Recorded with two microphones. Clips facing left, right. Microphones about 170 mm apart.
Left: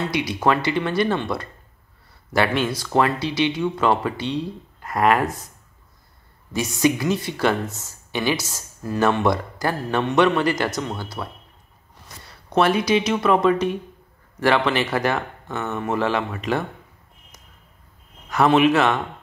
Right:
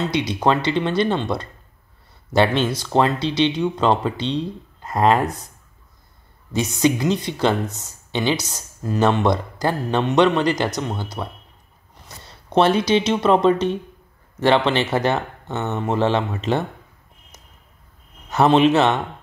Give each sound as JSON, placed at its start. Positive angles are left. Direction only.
{"t": 0.0, "sound": "speech", "side_deg": -25}
{"t": 5.2, "sound": "speech", "side_deg": 0}
{"t": 6.5, "sound": "speech", "side_deg": -20}
{"t": 12.5, "sound": "speech", "side_deg": -25}
{"t": 18.3, "sound": "speech", "side_deg": -25}